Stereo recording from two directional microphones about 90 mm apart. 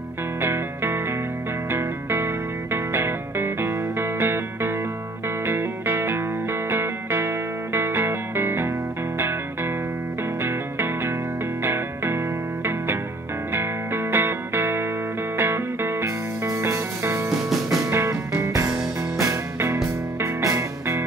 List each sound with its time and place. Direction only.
0.4 s music: 25° right (ahead or behind)
10.4 s music: 25° right (ahead or behind)
13.5 s music: 25° right (ahead or behind)
17.3 s music: 5° right (ahead or behind)
17.7 s music: 30° right (ahead or behind)